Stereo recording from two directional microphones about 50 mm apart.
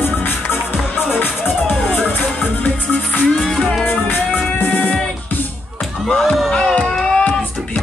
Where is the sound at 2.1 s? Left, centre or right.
Left.